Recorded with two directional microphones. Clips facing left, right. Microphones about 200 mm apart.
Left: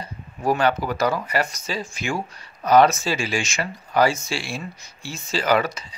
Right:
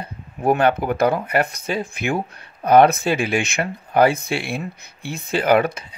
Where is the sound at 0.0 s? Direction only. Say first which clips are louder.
Right 3 dB; 55° right (ahead or behind).